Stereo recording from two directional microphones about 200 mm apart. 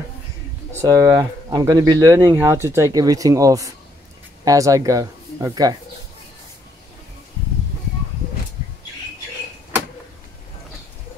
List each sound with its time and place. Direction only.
0.7 s speech: 15° right (ahead or behind)